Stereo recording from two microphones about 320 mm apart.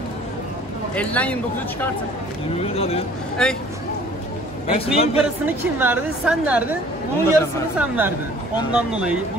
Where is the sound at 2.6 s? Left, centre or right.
Centre.